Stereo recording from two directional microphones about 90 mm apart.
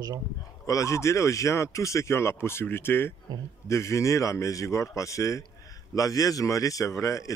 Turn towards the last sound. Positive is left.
turn(degrees=35)  # may be behind; listen again after turning